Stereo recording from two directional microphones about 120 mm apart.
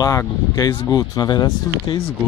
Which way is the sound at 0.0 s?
30° left (ahead or behind).